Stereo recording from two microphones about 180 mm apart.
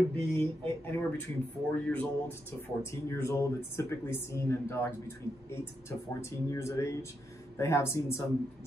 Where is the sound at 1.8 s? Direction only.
10° left (ahead or behind).